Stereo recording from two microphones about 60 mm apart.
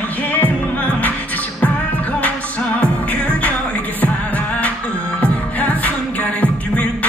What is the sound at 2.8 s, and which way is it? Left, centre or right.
Music, left.